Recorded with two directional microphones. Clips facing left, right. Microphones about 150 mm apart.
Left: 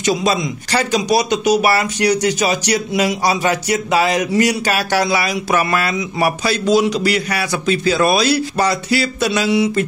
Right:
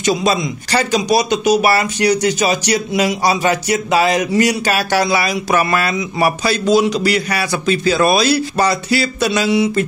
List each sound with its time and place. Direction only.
0.0 s speech: 30° right (ahead or behind)